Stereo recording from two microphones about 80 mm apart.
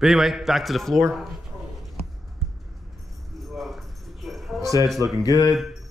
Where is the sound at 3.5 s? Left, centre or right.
Centre.